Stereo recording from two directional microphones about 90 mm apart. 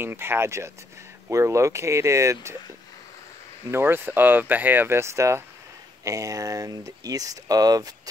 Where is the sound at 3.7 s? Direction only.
25° right (ahead or behind).